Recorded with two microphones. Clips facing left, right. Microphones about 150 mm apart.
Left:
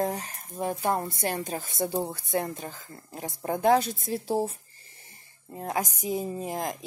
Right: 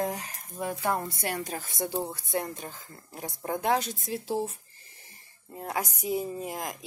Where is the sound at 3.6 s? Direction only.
35° left (ahead or behind).